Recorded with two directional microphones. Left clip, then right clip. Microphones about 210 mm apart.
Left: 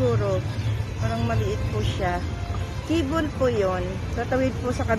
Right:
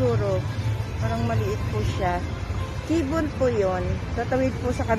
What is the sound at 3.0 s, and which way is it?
Speech, 5° right (ahead or behind).